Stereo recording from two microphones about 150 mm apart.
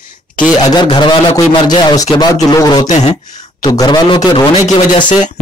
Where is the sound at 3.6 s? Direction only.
25° left (ahead or behind).